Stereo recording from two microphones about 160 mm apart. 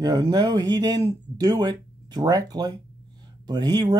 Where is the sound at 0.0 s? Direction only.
25° right (ahead or behind).